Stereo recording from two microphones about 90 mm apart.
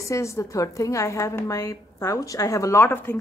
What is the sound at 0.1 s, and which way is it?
A woman's voice, 35° left (ahead or behind).